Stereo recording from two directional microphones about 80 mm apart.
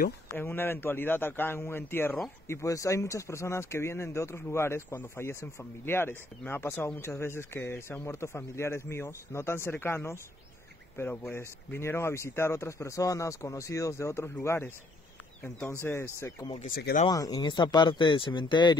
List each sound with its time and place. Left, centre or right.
0.3 s a man's voice: left
2.4 s speech: left
17.1 s speech: left